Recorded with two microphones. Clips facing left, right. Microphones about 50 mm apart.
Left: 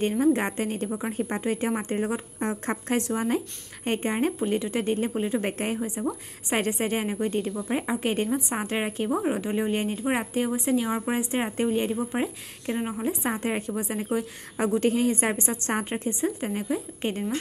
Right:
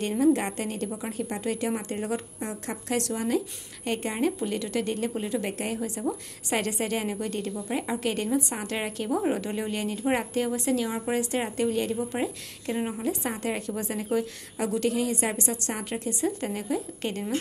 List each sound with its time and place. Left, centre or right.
0.2 s a woman's voice: left
2.3 s a woman's voice: left
5.4 s a woman's voice: left
5.8 s a woman's voice: centre
10.0 s a woman's voice: centre
14.6 s a woman's voice: left